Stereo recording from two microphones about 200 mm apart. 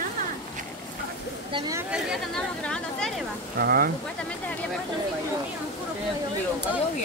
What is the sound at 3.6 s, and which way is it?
Speech, 50° right (ahead or behind).